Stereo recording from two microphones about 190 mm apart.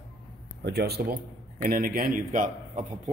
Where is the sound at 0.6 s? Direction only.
60° right (ahead or behind).